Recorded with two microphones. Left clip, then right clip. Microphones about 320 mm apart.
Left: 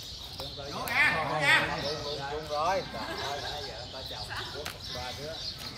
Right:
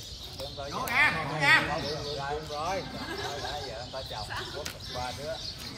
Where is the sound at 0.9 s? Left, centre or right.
Centre.